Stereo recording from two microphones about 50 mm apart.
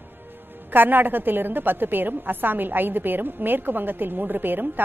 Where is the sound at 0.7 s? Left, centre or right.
Right.